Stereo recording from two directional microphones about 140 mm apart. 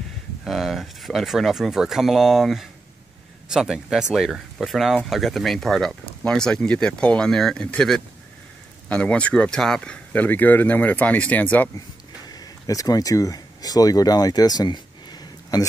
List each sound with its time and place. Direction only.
0.5 s speech: centre (ahead or behind)
12.3 s speech: 25° left (ahead or behind)